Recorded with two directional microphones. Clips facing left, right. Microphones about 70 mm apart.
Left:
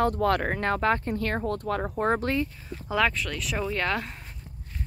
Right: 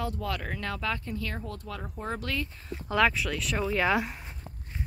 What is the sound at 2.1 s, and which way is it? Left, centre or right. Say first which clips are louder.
Speech: left 6 dB; left.